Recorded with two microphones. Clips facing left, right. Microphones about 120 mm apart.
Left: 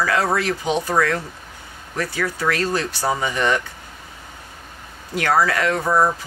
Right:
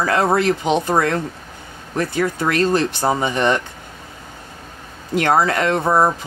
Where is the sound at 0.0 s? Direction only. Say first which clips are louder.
Right 3 dB; 25° right (ahead or behind).